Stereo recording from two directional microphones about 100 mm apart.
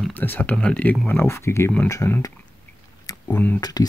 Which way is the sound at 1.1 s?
25° left (ahead or behind).